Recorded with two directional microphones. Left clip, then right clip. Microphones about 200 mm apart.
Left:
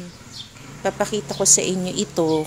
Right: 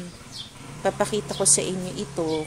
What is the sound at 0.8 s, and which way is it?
Speech, 10° left (ahead or behind).